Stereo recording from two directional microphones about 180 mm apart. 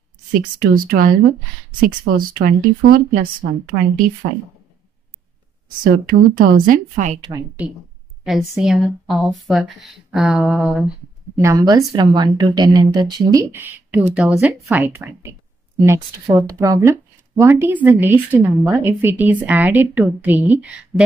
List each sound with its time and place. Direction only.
0.3 s speech: 50° right (ahead or behind)
6.0 s speech: 50° right (ahead or behind)
7.2 s a woman's voice: 25° right (ahead or behind)
8.2 s speech: centre (ahead or behind)
11.3 s a woman's voice: 20° right (ahead or behind)